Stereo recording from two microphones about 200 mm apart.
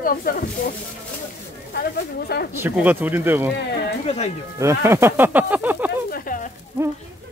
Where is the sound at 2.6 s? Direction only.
10° right (ahead or behind).